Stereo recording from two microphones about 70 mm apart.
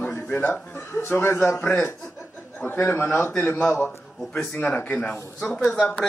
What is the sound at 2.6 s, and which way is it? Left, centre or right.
Speech, left.